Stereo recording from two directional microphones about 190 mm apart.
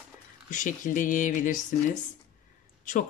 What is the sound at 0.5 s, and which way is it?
Speech, 40° left (ahead or behind).